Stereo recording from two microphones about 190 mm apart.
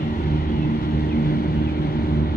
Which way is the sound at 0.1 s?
50° left (ahead or behind).